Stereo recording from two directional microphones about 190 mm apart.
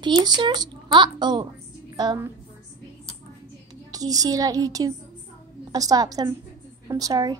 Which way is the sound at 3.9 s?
20° right (ahead or behind).